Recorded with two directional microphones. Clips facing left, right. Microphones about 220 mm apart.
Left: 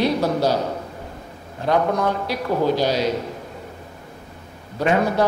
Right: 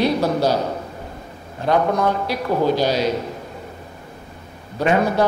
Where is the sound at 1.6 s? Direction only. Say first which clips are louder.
Right 1 dB; 20° right (ahead or behind).